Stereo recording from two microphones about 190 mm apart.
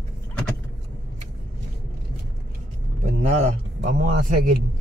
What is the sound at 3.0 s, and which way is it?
Vehicle, 35° right (ahead or behind).